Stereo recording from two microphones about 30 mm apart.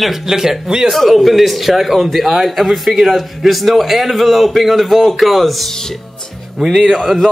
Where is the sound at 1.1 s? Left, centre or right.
Centre.